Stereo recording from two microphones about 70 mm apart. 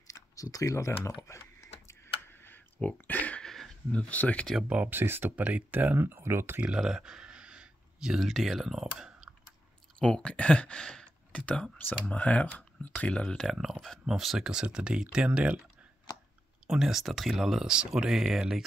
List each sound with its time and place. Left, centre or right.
0.1 s speech: left
1.2 s computer keyboard: left
2.8 s a sound: left
3.4 s a sound: centre
3.9 s speech: left
4.6 s speech: right
6.6 s a sound: centre
8.2 s speech: centre
9.9 s speech: centre
13.5 s speech: centre
16.6 s speech: centre